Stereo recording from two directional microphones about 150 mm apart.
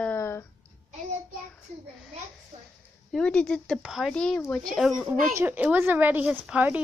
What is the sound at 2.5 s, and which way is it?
Speech, 35° right (ahead or behind).